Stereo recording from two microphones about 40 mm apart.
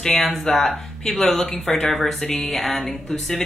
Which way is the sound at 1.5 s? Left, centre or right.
Left.